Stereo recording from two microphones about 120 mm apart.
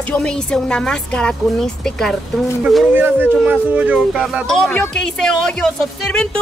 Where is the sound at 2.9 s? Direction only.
15° right (ahead or behind).